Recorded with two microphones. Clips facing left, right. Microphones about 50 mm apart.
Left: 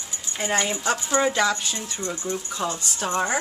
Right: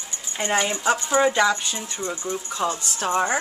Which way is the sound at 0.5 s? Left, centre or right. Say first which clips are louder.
Right 2 dB; centre.